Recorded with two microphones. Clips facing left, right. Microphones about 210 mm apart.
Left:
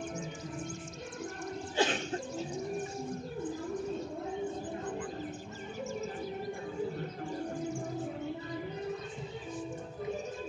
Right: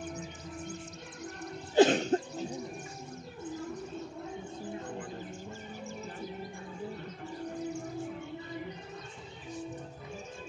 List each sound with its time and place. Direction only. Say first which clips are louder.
1.8 s cough: right 9 dB; 40° right (ahead or behind)